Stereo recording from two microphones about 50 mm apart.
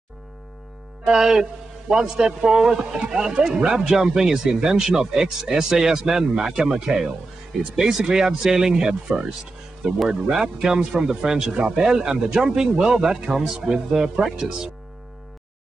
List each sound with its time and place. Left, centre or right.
1.0 s a man's voice: centre
11.5 s a man's voice: right